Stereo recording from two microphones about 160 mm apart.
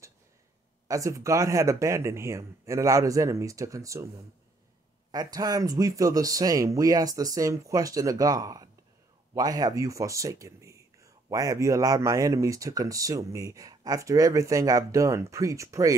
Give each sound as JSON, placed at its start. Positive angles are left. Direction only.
{"t": 0.8, "sound": "speech", "side_deg": -20}
{"t": 5.1, "sound": "speech", "side_deg": -25}